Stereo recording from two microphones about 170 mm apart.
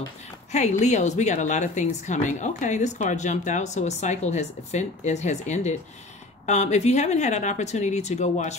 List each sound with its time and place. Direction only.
0.5 s a woman's voice: 40° left (ahead or behind)